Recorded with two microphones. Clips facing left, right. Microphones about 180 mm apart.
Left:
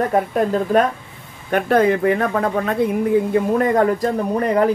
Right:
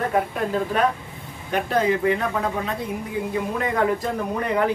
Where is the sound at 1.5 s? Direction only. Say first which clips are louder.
Left 6 dB; 60° left (ahead or behind); by 4.7 s 40° left (ahead or behind).